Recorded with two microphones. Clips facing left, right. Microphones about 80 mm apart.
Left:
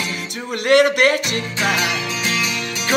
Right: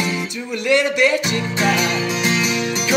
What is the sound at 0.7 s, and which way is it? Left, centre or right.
Music, left.